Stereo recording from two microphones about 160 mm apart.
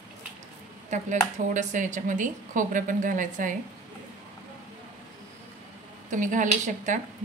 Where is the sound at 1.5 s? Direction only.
50° right (ahead or behind).